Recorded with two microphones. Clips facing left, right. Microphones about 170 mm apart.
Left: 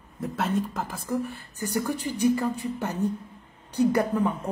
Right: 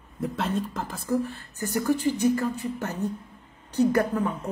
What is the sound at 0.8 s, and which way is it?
Speech, 10° left (ahead or behind).